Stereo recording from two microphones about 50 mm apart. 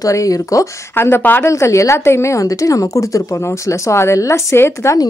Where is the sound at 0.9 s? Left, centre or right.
Left.